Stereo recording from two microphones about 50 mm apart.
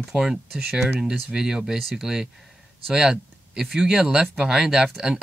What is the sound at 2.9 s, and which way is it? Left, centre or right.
Speech, centre.